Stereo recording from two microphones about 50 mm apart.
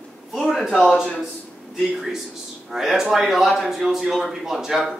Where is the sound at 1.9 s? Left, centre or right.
Centre.